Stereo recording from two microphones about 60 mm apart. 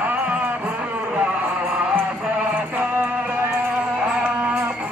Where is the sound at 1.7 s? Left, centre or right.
Right.